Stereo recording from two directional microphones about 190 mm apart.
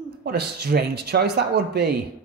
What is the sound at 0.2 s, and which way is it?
Speech, 55° right (ahead or behind).